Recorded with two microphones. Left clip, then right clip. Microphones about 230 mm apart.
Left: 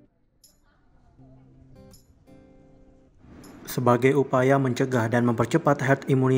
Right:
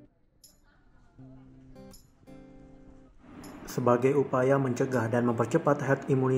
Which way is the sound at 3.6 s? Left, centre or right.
Left.